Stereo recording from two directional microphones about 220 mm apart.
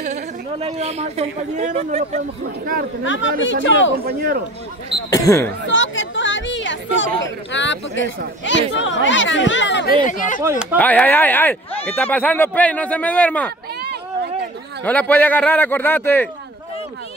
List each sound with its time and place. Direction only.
0.0 s a woman's voice: 30° right (ahead or behind)
3.1 s speech: 60° left (ahead or behind)
4.0 s a man's voice: 40° right (ahead or behind)
5.1 s speech: 15° left (ahead or behind)
5.7 s chatter: 55° left (ahead or behind)
7.5 s speech: 55° left (ahead or behind)
10.0 s speech: 35° left (ahead or behind)
10.8 s speech: 5° left (ahead or behind)
14.8 s speech: 5° left (ahead or behind)